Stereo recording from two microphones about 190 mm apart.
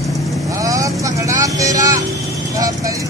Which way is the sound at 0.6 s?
20° right (ahead or behind).